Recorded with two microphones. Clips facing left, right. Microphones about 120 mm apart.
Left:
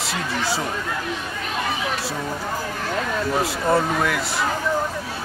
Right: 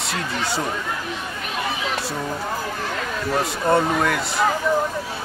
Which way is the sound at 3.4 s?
Centre (ahead or behind).